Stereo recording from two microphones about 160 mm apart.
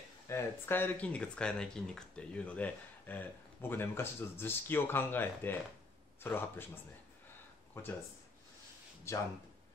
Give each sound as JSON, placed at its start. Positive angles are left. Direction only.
{"t": 0.3, "sound": "speech", "side_deg": 15}
{"t": 9.1, "sound": "speech", "side_deg": 15}